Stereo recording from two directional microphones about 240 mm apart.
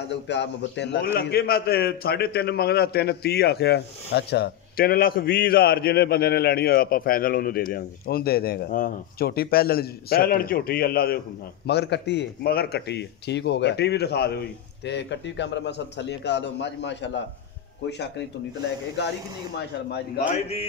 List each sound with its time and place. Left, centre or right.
0.1 s a man's voice: left
20.2 s mantra: left